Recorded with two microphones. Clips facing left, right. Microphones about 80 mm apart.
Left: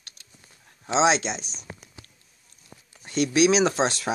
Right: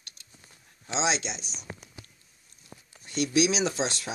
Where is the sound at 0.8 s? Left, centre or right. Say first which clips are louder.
Left 8 dB; left.